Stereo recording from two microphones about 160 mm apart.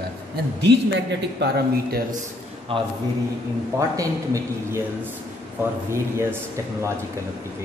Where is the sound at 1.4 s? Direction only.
90° right.